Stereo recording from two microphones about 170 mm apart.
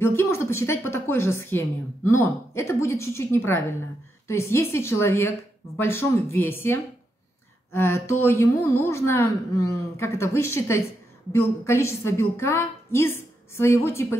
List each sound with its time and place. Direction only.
0.0 s a woman's voice: 15° left (ahead or behind)